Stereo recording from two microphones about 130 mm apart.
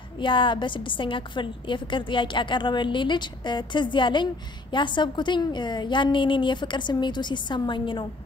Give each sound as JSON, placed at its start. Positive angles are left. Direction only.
{"t": 0.2, "sound": "a woman's voice", "side_deg": 40}